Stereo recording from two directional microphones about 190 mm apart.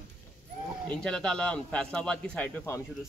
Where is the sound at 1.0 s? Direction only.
5° left (ahead or behind).